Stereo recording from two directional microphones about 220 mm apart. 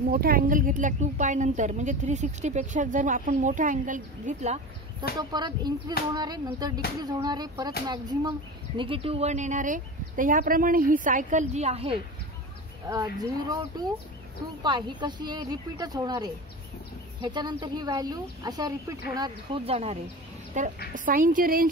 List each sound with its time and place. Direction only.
0.1 s a woman's voice: 40° right (ahead or behind)
5.3 s a woman's voice: 20° right (ahead or behind)
12.8 s a woman's voice: 15° right (ahead or behind); by 21.6 s 40° right (ahead or behind)